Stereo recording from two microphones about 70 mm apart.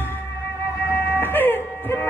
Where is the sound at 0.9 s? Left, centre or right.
Left.